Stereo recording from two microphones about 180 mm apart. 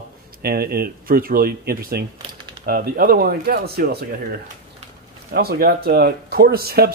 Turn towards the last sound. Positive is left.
turn(degrees=-60)  # may be behind; listen again after turning